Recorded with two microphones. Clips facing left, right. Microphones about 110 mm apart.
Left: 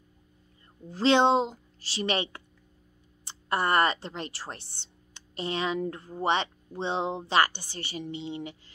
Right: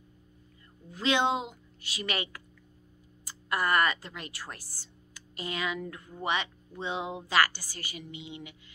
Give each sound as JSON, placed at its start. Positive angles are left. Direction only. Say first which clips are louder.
{"t": 0.8, "sound": "a woman's voice", "louder": "left 6 dB", "side_deg": 30}